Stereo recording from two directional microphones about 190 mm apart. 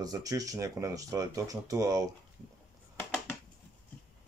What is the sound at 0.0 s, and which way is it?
Speech, 20° right (ahead or behind).